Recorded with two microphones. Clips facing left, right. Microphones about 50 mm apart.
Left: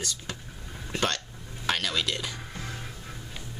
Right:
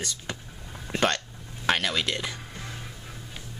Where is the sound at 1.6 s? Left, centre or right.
Right.